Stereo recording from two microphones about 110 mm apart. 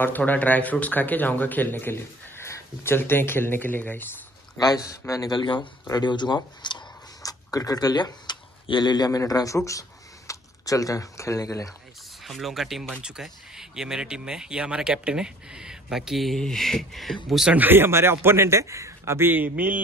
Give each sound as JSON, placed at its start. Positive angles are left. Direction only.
{"t": 0.0, "sound": "speech", "side_deg": 15}
{"t": 4.6, "sound": "speech", "side_deg": 35}
{"t": 12.2, "sound": "speech", "side_deg": 0}
{"t": 17.5, "sound": "a man's voice", "side_deg": -15}